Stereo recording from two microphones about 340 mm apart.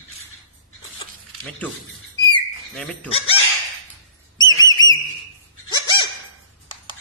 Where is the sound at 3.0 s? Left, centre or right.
Centre.